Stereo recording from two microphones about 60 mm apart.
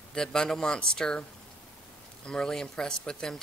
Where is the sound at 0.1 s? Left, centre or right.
Centre.